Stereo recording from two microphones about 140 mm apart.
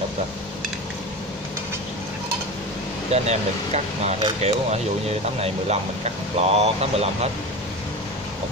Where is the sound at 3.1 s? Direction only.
50° right (ahead or behind).